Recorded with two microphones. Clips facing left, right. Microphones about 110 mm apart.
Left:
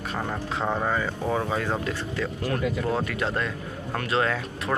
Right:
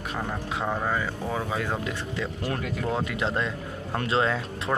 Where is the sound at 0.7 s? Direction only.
5° left (ahead or behind).